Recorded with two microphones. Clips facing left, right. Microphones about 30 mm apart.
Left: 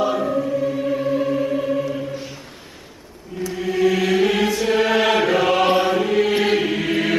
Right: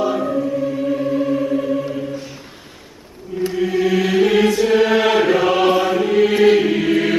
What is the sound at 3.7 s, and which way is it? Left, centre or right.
Chant, centre.